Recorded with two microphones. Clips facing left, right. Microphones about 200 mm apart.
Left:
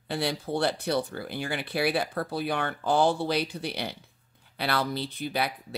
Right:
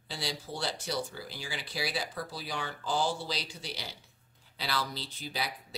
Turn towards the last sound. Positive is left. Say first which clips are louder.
# left 8 dB
turn(degrees=60)  # may be behind; listen again after turning